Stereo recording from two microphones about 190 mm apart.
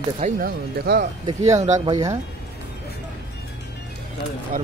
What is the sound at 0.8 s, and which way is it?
Speech, 55° right (ahead or behind).